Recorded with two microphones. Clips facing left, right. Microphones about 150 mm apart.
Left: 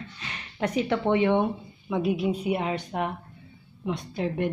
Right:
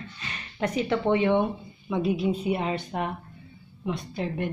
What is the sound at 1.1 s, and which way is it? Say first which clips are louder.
A woman's voice: left 1 dB; 15° left (ahead or behind).